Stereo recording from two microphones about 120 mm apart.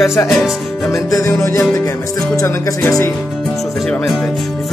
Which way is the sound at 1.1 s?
25° left (ahead or behind).